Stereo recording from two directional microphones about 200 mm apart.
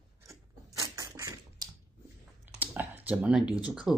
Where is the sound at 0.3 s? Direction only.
15° right (ahead or behind).